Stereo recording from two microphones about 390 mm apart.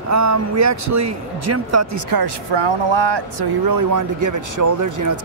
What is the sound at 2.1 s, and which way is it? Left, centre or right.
Speech, right.